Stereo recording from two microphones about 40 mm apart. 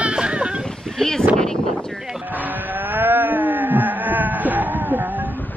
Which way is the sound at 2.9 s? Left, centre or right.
Right.